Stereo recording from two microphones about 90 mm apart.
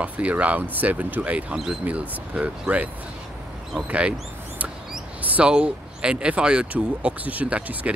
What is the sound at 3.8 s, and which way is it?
Speech, 15° right (ahead or behind).